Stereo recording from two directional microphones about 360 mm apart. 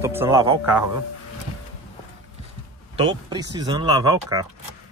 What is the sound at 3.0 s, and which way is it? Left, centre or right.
Speech, centre.